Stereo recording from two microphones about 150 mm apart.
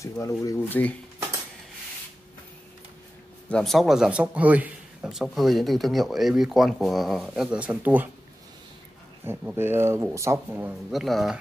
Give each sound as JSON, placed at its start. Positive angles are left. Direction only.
{"t": 0.2, "sound": "speech", "side_deg": 20}
{"t": 3.4, "sound": "a man's voice", "side_deg": 5}
{"t": 9.2, "sound": "speech", "side_deg": -10}
{"t": 10.9, "sound": "a man's voice", "side_deg": 0}